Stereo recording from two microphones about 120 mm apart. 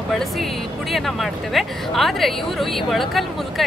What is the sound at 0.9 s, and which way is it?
A woman's voice, centre (ahead or behind).